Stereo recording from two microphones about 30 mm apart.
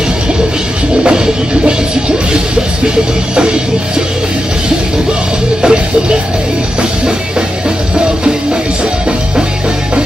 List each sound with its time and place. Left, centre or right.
1.0 s music: right
3.3 s music: right
5.6 s music: right